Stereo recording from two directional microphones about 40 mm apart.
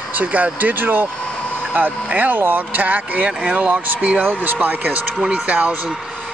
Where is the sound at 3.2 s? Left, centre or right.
Right.